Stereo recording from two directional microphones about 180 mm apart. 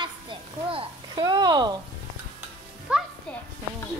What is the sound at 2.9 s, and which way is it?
Speech, 5° right (ahead or behind).